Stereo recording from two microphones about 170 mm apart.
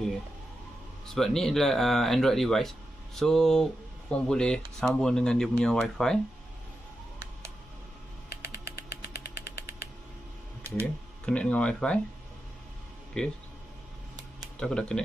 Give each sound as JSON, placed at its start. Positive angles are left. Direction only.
{"t": 1.1, "sound": "speech", "side_deg": 0}
{"t": 8.7, "sound": "a sound", "side_deg": 65}
{"t": 11.2, "sound": "speech", "side_deg": 5}
{"t": 13.2, "sound": "speech", "side_deg": 5}
{"t": 14.4, "sound": "speech", "side_deg": 5}